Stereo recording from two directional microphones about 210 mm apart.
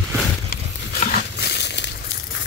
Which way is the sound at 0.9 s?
40° left (ahead or behind).